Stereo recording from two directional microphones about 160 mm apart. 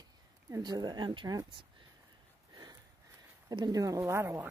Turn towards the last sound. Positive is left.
turn(degrees=-15)  # may be behind; listen again after turning